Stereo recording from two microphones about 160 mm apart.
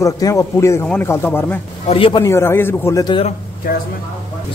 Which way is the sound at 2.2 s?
15° left (ahead or behind).